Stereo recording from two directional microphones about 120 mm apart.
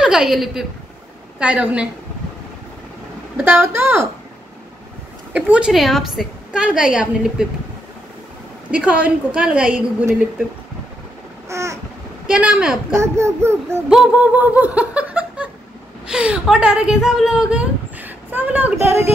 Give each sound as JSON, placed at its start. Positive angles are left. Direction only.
{"t": 0.0, "sound": "a woman's voice", "side_deg": -5}
{"t": 3.3, "sound": "a child's voice", "side_deg": -15}
{"t": 5.3, "sound": "a woman's voice", "side_deg": -10}
{"t": 8.7, "sound": "a woman's voice", "side_deg": -10}
{"t": 11.4, "sound": "babbling", "side_deg": -25}
{"t": 12.3, "sound": "a woman's voice", "side_deg": -10}
{"t": 12.9, "sound": "a child's voice", "side_deg": -25}
{"t": 13.8, "sound": "a sound", "side_deg": -10}
{"t": 16.1, "sound": "a woman's voice", "side_deg": -5}